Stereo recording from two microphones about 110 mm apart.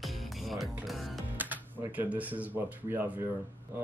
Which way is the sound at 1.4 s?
15° right (ahead or behind).